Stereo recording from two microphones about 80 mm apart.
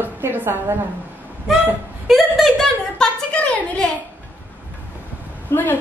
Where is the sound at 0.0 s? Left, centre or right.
Right.